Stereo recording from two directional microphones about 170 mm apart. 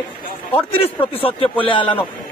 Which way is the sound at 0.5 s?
30° left (ahead or behind).